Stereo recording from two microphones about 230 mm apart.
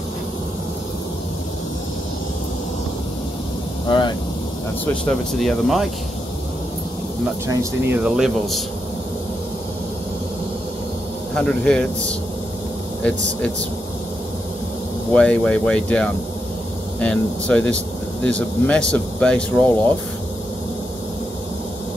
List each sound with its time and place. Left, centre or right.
3.8 s a sound: centre
5.0 s speech: centre
7.4 s speech: centre
11.3 s speech: centre
15.1 s speech: centre